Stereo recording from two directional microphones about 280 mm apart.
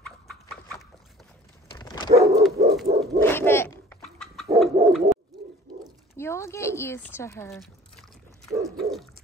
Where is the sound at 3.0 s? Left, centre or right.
Centre.